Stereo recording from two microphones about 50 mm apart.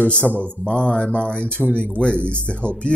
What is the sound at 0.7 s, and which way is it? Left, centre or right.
Speech, left.